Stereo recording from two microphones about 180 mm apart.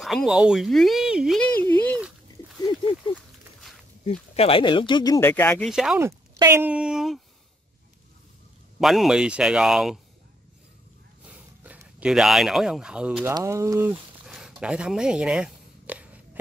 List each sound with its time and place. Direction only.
0.0 s speech: centre (ahead or behind)
1.7 s dog: 10° left (ahead or behind)
4.0 s speech: 35° left (ahead or behind); by 5.9 s 5° right (ahead or behind)
5.9 s speech: 15° right (ahead or behind)
8.7 s speech: centre (ahead or behind)
11.6 s speech: 5° right (ahead or behind)
14.2 s a sound: centre (ahead or behind)